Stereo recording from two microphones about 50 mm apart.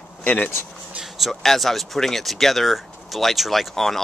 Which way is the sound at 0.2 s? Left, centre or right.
Left.